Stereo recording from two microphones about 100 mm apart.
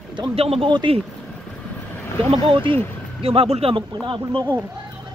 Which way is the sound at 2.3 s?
65° right (ahead or behind).